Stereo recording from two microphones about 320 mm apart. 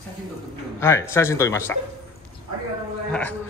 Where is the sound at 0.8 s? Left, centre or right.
Centre.